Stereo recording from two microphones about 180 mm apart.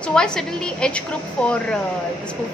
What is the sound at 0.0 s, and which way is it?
A woman's voice, 5° left (ahead or behind).